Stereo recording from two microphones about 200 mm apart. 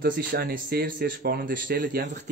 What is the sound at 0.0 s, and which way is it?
Speech, 50° right (ahead or behind).